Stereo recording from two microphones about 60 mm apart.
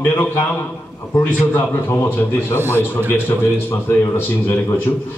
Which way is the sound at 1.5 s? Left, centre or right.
Left.